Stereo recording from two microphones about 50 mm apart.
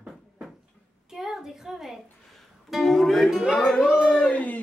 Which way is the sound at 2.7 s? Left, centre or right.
Centre.